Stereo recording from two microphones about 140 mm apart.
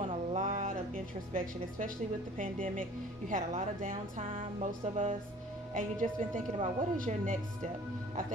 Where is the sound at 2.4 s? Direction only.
70° right (ahead or behind).